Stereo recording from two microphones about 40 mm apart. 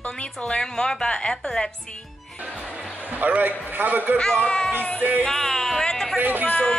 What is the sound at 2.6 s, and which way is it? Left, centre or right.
Speech, right.